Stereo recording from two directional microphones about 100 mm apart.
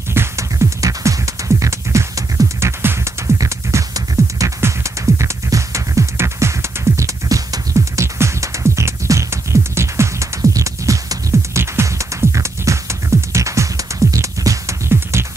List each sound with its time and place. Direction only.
0.1 s music: 25° right (ahead or behind)